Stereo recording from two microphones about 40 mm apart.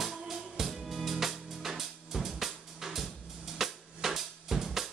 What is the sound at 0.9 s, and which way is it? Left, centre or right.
Music, centre.